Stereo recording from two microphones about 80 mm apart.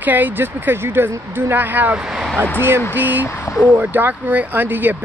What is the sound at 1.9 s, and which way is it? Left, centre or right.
Speech, centre.